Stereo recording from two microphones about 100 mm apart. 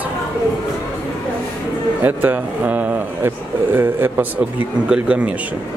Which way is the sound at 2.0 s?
20° right (ahead or behind).